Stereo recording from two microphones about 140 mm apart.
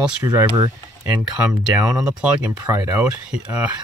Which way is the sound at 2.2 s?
10° right (ahead or behind).